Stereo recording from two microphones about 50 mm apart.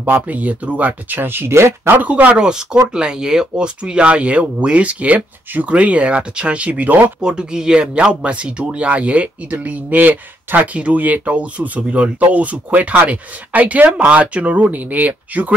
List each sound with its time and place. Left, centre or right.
0.0 s speech: right
1.2 s speech: right
1.9 s speech: right
7.2 s speech: centre